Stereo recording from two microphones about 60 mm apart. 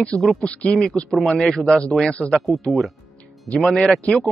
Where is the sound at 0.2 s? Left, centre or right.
Centre.